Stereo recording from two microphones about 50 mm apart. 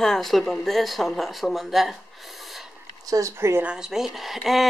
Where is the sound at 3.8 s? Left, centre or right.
Centre.